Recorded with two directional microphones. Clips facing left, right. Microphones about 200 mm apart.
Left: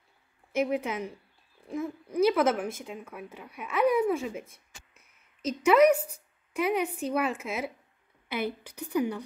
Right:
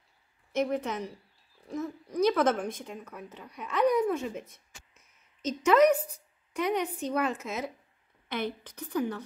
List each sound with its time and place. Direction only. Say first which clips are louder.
0.5 s speech: left 1 dB; 10° left (ahead or behind)
2.1 s speech: left 1 dB; 5° left (ahead or behind)